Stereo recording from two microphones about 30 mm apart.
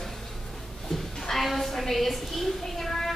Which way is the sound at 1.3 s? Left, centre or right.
Centre.